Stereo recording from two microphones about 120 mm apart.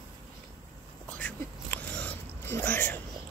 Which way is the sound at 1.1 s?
10° left (ahead or behind).